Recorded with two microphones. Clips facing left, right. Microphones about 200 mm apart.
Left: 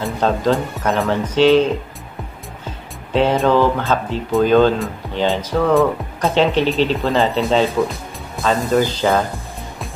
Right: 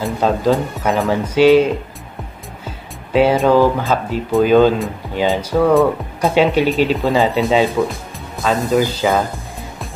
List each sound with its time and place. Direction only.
0.0 s speech: 5° right (ahead or behind)